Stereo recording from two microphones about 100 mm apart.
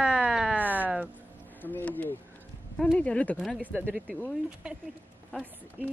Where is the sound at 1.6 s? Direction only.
20° left (ahead or behind).